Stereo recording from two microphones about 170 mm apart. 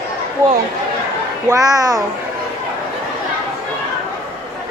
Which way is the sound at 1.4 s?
20° right (ahead or behind).